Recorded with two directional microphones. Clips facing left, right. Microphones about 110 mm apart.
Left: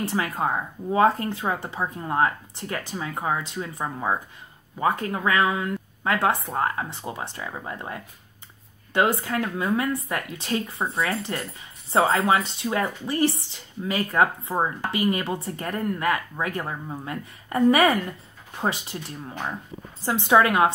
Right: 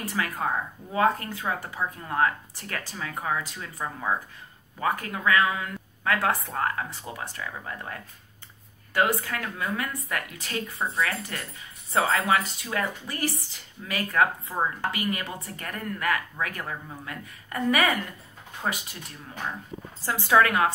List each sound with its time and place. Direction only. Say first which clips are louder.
0.0 s speech: left 4 dB; 25° left (ahead or behind)
20.0 s speech: left 2 dB; 20° left (ahead or behind)